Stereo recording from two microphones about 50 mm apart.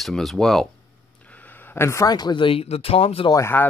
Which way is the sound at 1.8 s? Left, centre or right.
Left.